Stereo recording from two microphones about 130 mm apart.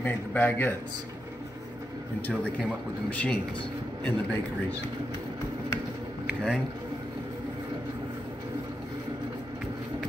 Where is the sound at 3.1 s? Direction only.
10° left (ahead or behind).